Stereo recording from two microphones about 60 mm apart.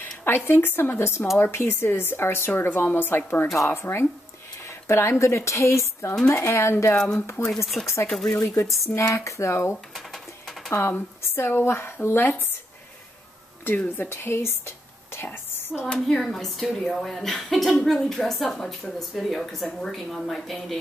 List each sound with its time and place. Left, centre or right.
0.0 s a woman's voice: left
7.5 s speech: centre
7.8 s speech: left
8.3 s speech: left
13.7 s a woman's voice: left
15.7 s a woman's voice: centre